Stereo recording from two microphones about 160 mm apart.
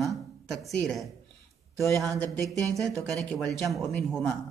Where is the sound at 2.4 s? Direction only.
20° right (ahead or behind).